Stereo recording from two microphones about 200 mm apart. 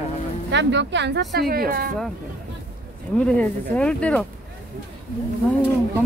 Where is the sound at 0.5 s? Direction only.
60° right (ahead or behind).